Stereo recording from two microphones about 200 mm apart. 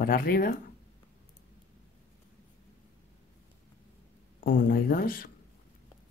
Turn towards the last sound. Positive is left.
turn(degrees=45)  # may be behind; listen again after turning